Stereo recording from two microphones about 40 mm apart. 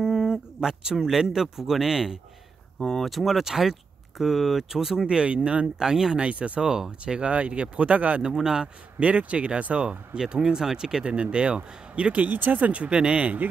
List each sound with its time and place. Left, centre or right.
0.0 s a sound: centre
0.9 s speech: centre
2.8 s speech: centre
3.1 s speech: centre
5.0 s speech: right
5.8 s speech: centre
6.2 s speech: right
6.6 s speech: right
7.2 s speech: right
8.2 s speech: centre
9.0 s speech: right
10.1 s speech: centre
11.1 s speech: right